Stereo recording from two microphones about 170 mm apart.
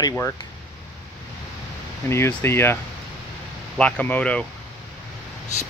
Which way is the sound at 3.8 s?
10° left (ahead or behind).